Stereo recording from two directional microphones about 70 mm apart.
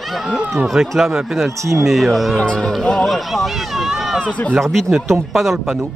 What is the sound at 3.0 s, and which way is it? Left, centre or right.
Speech, centre.